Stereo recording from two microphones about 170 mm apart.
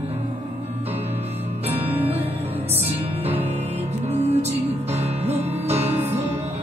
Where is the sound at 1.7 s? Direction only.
10° right (ahead or behind).